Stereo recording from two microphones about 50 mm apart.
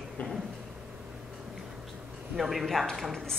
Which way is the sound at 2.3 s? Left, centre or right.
Centre.